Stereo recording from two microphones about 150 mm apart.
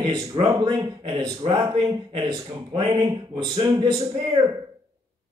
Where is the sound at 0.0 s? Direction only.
25° right (ahead or behind).